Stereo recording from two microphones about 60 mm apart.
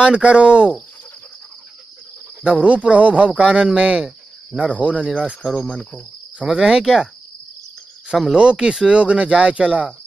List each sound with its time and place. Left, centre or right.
0.0 s speech: centre
2.4 s speech: right
5.6 s cricket: centre
6.4 s speech: centre
8.1 s speech: centre
8.4 s speech: centre